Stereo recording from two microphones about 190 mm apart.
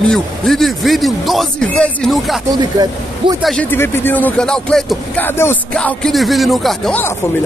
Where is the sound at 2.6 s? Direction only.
20° right (ahead or behind).